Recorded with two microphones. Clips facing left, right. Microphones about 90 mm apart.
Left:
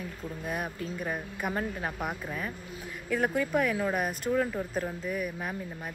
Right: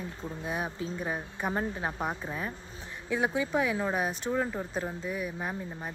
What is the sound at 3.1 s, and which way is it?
Speech, 10° right (ahead or behind).